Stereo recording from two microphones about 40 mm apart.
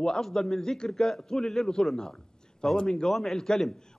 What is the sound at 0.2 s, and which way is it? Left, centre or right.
A man's voice, centre.